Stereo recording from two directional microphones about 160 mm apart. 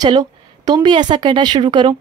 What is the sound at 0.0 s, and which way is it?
A woman's voice, 25° right (ahead or behind).